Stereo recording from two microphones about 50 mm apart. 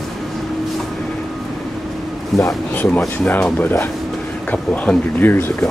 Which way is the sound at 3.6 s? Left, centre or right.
Left.